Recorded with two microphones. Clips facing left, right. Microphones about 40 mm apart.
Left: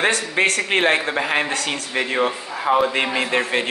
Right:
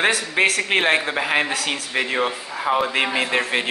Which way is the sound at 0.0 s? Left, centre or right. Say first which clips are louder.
Even; centre.